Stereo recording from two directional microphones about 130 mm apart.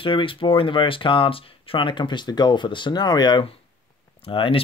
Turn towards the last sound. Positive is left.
turn(degrees=45)  # may be behind; listen again after turning